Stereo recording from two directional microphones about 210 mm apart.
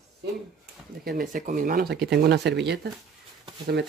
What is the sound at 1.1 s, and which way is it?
Speech, 40° right (ahead or behind).